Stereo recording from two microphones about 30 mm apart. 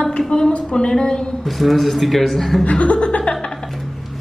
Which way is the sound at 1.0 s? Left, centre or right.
Left.